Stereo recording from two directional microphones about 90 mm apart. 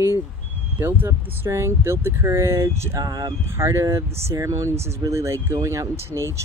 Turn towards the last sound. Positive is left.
turn(degrees=-30)  # may be behind; listen again after turning